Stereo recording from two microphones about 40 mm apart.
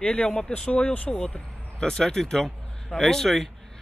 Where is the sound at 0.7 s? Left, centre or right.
Left.